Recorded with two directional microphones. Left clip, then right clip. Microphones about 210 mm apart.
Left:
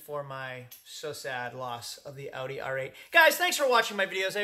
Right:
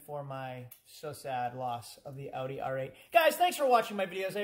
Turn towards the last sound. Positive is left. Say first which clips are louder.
# left 5 dB
turn(degrees=0)  # may be behind; listen again after turning